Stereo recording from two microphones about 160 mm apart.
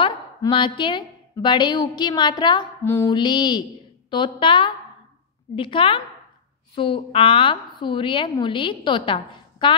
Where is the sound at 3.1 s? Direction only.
30° left (ahead or behind).